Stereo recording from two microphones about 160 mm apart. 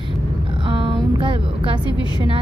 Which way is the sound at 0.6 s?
30° right (ahead or behind).